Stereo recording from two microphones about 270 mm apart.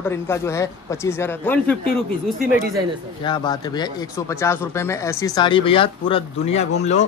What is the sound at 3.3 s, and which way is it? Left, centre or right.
Speech, centre.